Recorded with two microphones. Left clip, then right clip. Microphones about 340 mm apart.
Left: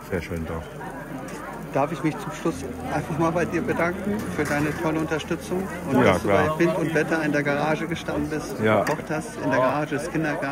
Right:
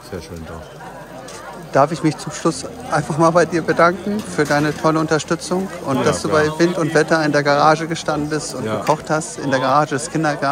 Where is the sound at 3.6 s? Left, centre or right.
Right.